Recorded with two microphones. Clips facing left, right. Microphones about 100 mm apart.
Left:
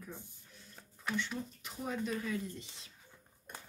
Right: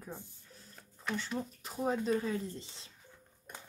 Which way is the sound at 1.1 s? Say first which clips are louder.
Right 1 dB; 40° right (ahead or behind).